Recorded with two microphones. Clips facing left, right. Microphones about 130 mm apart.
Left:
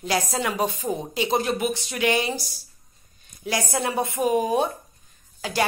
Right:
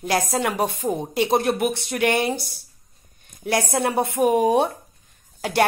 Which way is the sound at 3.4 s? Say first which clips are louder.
Right 4 dB; 60° right (ahead or behind).